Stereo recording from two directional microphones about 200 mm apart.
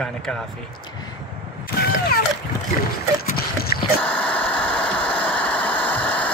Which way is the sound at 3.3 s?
50° left (ahead or behind).